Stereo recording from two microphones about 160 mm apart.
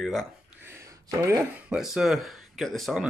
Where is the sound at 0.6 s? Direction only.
15° right (ahead or behind).